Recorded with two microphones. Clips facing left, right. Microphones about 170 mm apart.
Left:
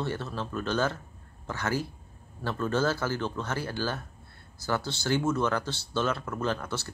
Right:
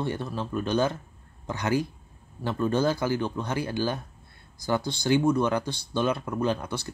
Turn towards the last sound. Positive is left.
turn(degrees=-15)  # may be behind; listen again after turning